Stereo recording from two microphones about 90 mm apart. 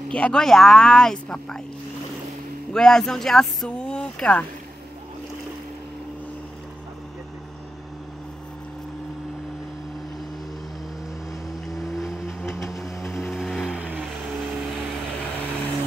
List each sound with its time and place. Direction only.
0.1 s speech: 10° left (ahead or behind)
2.7 s speech: 5° left (ahead or behind)
11.7 s vehicle: 5° right (ahead or behind)
13.7 s vehicle: 15° right (ahead or behind)